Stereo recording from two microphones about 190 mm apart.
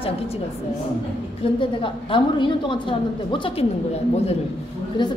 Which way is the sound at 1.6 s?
25° left (ahead or behind).